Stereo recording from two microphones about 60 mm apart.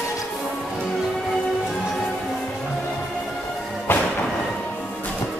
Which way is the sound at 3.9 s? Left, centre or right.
Left.